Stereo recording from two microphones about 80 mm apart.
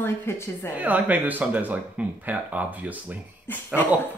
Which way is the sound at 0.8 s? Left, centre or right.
Centre.